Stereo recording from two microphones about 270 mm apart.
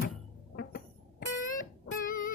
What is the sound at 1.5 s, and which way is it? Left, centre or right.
Music, left.